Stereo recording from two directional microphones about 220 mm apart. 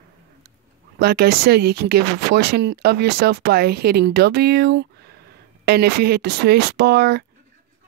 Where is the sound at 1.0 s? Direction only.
45° right (ahead or behind).